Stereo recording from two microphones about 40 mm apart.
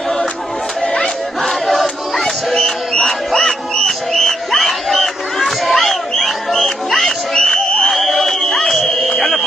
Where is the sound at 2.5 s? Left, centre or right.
Centre.